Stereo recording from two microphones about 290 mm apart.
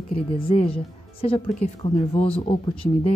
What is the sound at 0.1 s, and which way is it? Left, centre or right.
A woman's voice, centre.